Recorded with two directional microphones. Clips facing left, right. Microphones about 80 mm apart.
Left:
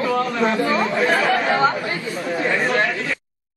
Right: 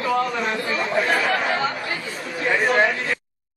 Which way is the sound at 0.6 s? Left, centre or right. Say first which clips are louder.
Left 4 dB; left.